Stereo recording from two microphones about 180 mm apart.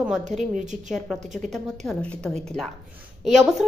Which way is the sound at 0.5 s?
45° right (ahead or behind).